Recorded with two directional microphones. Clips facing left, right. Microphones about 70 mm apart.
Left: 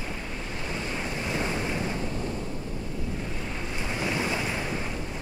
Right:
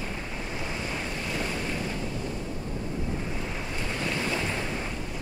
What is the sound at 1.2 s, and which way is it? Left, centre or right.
Waves, left.